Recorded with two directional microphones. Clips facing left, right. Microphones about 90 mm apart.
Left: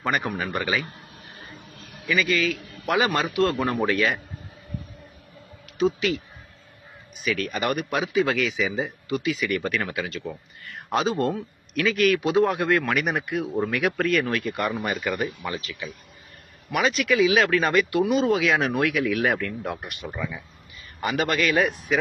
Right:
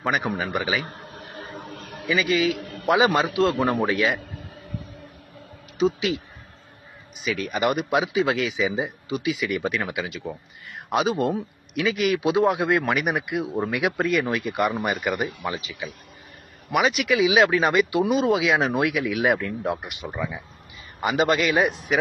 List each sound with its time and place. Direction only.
0.2 s speech: 15° right (ahead or behind)
0.8 s a sound: 50° right (ahead or behind)
2.1 s speech: 15° right (ahead or behind)
2.5 s a sound: 60° right (ahead or behind)
2.9 s speech: 20° right (ahead or behind)
5.8 s a man's voice: 15° right (ahead or behind)